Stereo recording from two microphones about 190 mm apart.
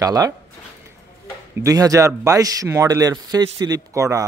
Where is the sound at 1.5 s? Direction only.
15° right (ahead or behind).